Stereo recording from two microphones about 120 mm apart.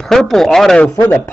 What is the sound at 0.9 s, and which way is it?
Speech, 20° left (ahead or behind).